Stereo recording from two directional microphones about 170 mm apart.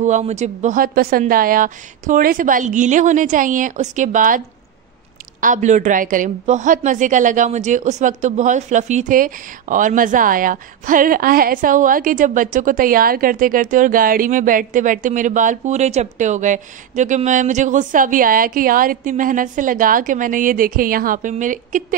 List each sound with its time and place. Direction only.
0.0 s speech: 45° right (ahead or behind)
5.4 s speech: 45° right (ahead or behind)